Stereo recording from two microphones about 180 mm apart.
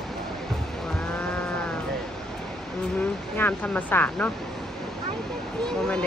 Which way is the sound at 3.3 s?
10° left (ahead or behind).